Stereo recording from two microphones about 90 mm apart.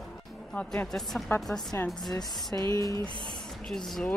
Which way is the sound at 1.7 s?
30° left (ahead or behind).